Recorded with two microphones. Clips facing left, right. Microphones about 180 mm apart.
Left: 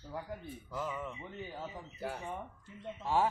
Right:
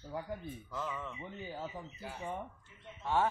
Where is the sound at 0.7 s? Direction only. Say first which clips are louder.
Left 2 dB; 10° left (ahead or behind).